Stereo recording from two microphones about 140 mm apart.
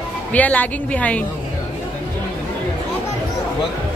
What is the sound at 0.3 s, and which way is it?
Speech, 10° left (ahead or behind).